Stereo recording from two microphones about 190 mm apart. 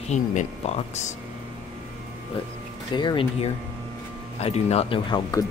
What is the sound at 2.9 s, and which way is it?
Speech, 25° left (ahead or behind).